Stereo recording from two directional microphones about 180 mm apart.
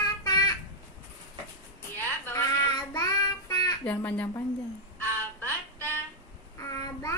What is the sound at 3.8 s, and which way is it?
Speech, 10° left (ahead or behind).